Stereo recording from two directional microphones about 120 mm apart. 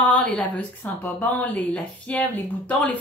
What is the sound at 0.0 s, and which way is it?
A woman's voice, 10° left (ahead or behind).